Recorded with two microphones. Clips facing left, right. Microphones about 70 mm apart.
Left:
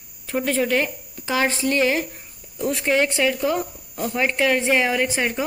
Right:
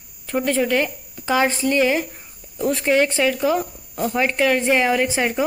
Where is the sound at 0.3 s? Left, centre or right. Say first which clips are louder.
Right 2 dB; centre.